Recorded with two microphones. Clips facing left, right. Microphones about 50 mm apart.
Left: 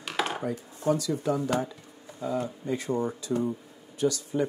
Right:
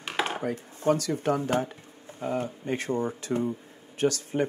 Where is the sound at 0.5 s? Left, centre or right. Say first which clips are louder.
Right 2 dB; right.